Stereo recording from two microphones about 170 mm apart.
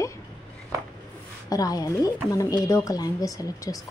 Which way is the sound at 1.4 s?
20° left (ahead or behind).